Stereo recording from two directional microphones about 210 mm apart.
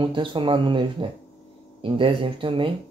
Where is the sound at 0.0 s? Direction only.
25° right (ahead or behind).